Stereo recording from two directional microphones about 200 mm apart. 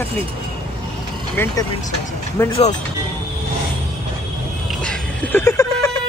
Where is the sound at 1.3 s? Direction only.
10° left (ahead or behind).